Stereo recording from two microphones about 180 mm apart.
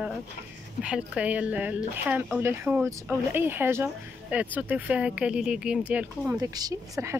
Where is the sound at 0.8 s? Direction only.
5° right (ahead or behind).